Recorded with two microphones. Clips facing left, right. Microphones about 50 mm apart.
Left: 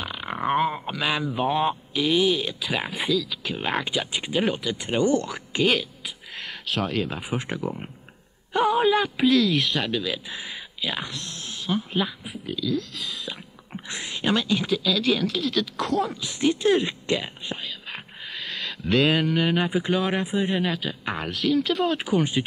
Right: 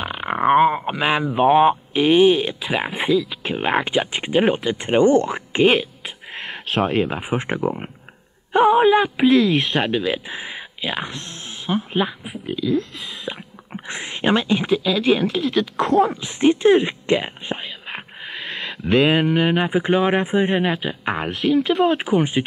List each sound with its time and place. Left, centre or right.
0.0 s a man's voice: right